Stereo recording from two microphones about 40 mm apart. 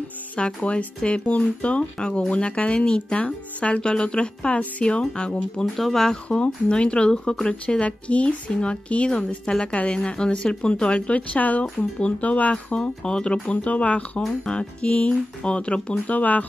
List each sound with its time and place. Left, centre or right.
0.6 s speech: left
5.8 s speech: centre
6.2 s speech: left
11.1 s speech: left
12.7 s speech: left
13.5 s speech: left
16.2 s speech: left